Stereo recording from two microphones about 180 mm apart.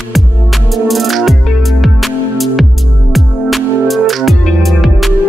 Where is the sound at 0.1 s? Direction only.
Centre (ahead or behind).